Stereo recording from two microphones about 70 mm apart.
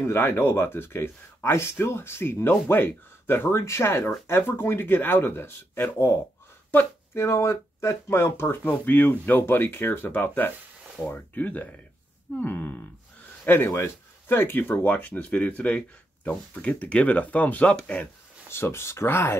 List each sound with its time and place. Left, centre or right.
0.0 s speech: left
6.7 s a sound: left
7.2 s speech: left; by 18.0 s centre
18.5 s speech: left